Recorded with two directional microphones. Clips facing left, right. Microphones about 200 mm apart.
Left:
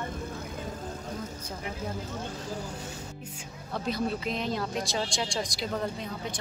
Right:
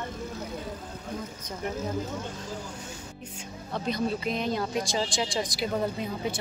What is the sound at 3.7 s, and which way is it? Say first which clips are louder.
Speech: right 1 dB; 5° left (ahead or behind).